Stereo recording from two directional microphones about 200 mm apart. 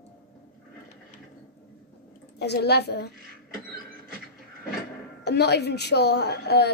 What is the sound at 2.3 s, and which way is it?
Speech, 55° left (ahead or behind).